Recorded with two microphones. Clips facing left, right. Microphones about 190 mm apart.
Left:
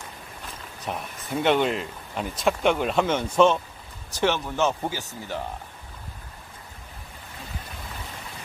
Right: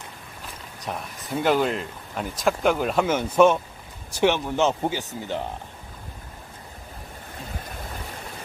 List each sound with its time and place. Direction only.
0.8 s speech: centre (ahead or behind); by 5.5 s 20° right (ahead or behind)